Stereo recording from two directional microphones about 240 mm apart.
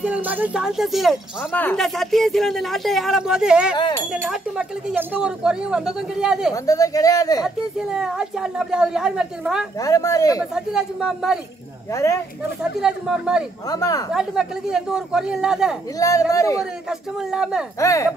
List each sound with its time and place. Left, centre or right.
0.0 s speech: centre
3.7 s speech: centre
4.1 s speech: centre
6.5 s speech: centre
7.4 s speech: centre
9.8 s speech: centre
10.5 s speech: centre
11.9 s speech: centre
12.8 s speech: centre
13.7 s speech: centre
14.1 s speech: centre
16.0 s speech: centre
17.3 s speech: centre
17.7 s speech: centre